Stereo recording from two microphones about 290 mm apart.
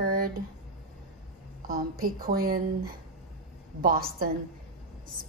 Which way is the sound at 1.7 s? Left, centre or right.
Right.